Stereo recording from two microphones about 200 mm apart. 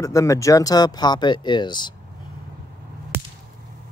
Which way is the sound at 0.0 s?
15° left (ahead or behind).